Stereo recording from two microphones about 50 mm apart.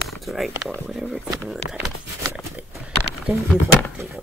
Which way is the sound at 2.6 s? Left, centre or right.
Centre.